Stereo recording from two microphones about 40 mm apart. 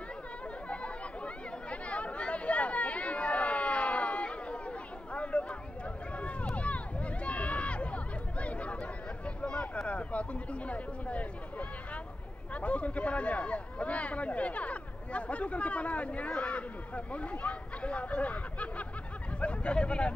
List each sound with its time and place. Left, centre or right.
0.7 s chatter: left
6.5 s hubbub: left
12.5 s a sound: left